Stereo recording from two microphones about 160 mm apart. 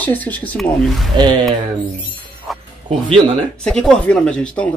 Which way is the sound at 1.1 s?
30° right (ahead or behind).